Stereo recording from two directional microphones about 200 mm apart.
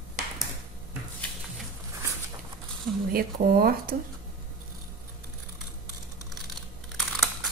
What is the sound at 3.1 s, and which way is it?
Speech, 50° right (ahead or behind).